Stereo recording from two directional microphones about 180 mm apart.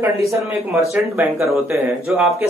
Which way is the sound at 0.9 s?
10° right (ahead or behind).